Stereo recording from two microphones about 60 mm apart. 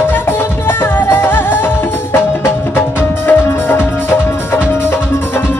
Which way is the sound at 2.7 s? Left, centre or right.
Left.